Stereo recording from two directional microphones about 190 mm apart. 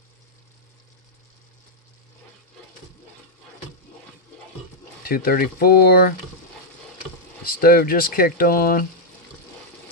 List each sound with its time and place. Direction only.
5.0 s speech: 50° left (ahead or behind)
7.4 s speech: 50° left (ahead or behind)